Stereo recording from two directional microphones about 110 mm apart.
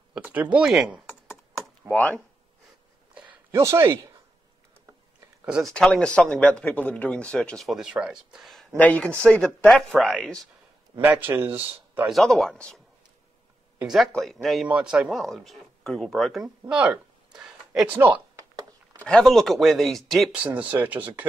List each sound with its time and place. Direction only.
0.1 s speech: 15° right (ahead or behind)
1.9 s speech: 15° left (ahead or behind)
3.5 s speech: 25° right (ahead or behind)
5.6 s speech: 5° left (ahead or behind)
8.7 s speech: 15° left (ahead or behind)
11.0 s speech: 15° right (ahead or behind)
12.1 s speech: centre (ahead or behind)
13.8 s speech: centre (ahead or behind)
16.4 s speech: 15° right (ahead or behind)
17.9 s speech: 20° right (ahead or behind)
19.0 s speech: 5° left (ahead or behind)
20.3 s speech: 15° right (ahead or behind)